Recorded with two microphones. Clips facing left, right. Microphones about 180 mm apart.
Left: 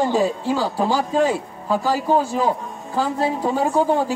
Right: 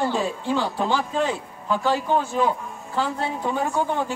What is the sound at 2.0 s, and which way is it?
Speech, 35° left (ahead or behind).